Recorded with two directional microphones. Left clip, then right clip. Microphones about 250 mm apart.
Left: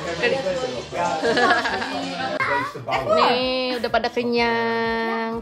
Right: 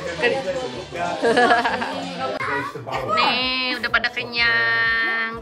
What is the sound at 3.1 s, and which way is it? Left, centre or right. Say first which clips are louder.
Speech: even; centre.